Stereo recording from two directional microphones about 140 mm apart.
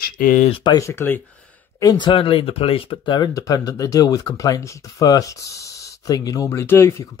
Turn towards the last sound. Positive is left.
turn(degrees=20)  # may be behind; listen again after turning